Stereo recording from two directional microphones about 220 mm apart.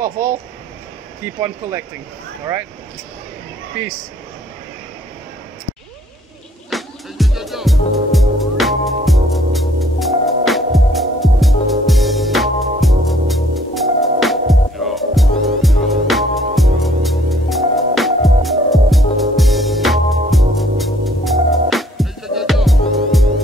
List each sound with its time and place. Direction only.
0.0 s speech: 40° right (ahead or behind)
6.7 s music: centre (ahead or behind)